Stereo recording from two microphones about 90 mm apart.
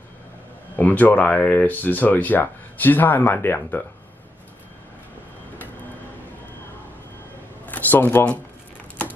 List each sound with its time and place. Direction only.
0.7 s speech: 20° left (ahead or behind)
7.6 s speech: 20° left (ahead or behind)